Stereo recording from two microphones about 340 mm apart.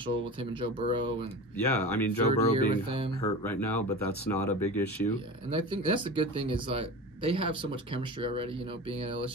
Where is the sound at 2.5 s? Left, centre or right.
Centre.